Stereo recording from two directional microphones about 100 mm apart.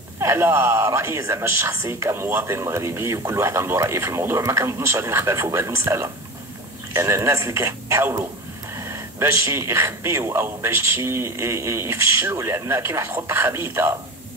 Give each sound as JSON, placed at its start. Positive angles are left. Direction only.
{"t": 0.2, "sound": "speech", "side_deg": -25}